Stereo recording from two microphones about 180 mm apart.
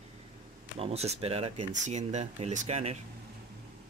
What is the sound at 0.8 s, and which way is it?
Speech, 35° right (ahead or behind).